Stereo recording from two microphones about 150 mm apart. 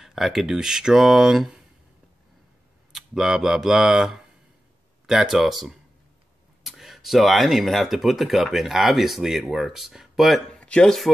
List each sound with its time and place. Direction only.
0.0 s speech: centre (ahead or behind)
2.9 s speech: 5° right (ahead or behind)